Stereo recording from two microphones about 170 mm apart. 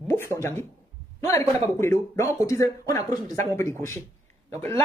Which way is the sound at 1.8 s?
15° left (ahead or behind).